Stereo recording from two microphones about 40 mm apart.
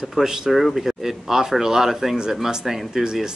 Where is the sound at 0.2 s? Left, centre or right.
Centre.